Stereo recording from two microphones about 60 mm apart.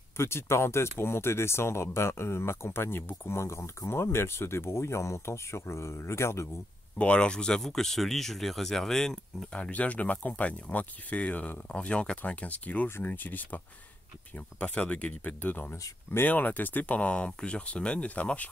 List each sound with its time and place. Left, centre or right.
0.2 s speech: left
7.0 s speech: centre
9.6 s speech: left